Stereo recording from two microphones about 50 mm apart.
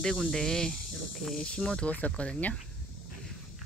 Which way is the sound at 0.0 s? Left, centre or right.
Centre.